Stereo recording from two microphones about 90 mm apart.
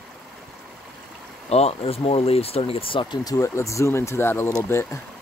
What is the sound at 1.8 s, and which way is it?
Speech, 90° left.